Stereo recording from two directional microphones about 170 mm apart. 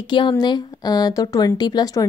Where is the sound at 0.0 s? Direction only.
30° left (ahead or behind).